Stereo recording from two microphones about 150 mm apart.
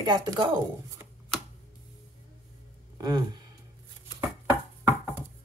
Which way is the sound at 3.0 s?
30° right (ahead or behind).